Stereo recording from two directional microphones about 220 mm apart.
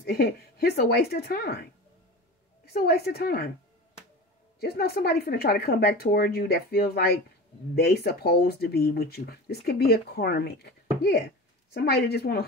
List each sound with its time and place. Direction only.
0.0 s speech: 45° left (ahead or behind)
4.6 s speech: 45° left (ahead or behind)